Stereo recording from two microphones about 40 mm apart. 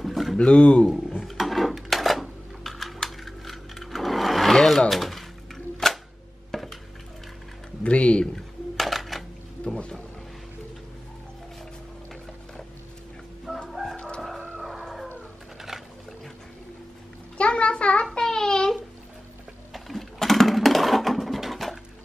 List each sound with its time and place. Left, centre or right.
0.0 s pigeon: centre
0.4 s speech: left
1.2 s roaring cats: centre
1.8 s a sound: centre
5.8 s camera: centre
6.5 s dishes: centre
7.8 s a sound: left
8.4 s coin: centre
13.7 s chicken: centre
13.9 s chicken: left
17.4 s a sound: left
18.2 s a sound: centre
19.7 s sewing machine: centre